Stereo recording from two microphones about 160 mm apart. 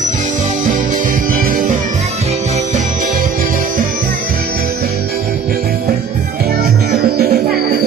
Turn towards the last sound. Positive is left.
turn(degrees=-75)  # may be behind; listen again after turning